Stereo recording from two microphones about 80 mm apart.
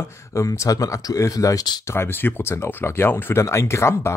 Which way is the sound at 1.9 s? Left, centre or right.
Left.